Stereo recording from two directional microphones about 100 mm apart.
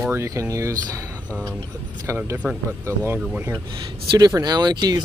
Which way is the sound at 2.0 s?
20° right (ahead or behind).